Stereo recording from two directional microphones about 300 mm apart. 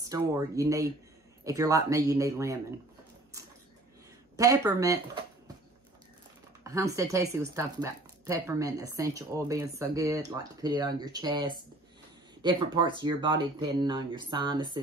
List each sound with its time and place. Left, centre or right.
0.0 s speech: centre
4.4 s speech: centre
6.6 s speech: centre